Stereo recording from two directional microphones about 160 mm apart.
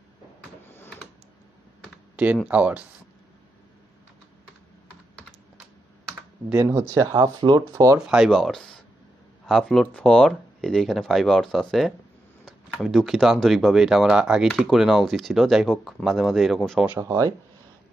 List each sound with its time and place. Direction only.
2.4 s speech: 10° right (ahead or behind)
6.0 s computer keyboard: 10° right (ahead or behind)
6.9 s speech: 20° right (ahead or behind)
8.1 s speech: centre (ahead or behind)